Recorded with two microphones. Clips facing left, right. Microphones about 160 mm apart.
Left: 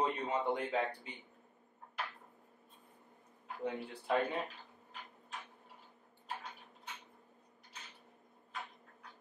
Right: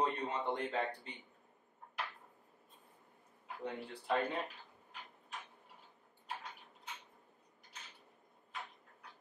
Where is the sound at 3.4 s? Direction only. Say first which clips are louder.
Left 3 dB; 5° left (ahead or behind).